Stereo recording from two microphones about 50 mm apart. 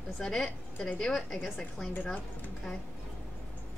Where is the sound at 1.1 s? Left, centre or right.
Centre.